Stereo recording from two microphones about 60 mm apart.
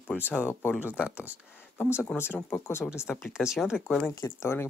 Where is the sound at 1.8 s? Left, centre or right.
Left.